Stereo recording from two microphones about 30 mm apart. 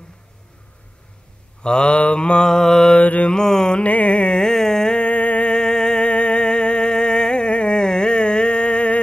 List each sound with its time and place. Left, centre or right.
1.6 s speech: left
2.4 s mantra: centre
3.0 s mantra: left
3.4 s music: centre
3.8 s music: left
4.4 s a sound: centre
4.9 s a sound: left
5.5 s music: left
6.0 s music: left